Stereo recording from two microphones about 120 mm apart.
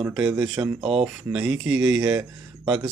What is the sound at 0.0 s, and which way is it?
Speech, 10° right (ahead or behind).